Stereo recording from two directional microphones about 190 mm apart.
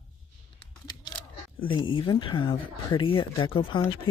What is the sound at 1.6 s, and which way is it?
Speech, 25° left (ahead or behind).